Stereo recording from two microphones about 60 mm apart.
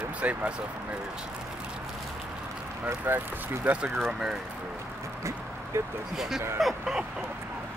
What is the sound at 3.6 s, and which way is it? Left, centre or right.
Speech, right.